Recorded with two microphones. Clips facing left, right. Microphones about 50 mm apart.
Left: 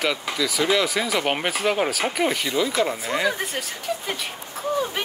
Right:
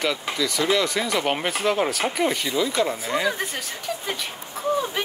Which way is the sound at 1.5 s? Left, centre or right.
Centre.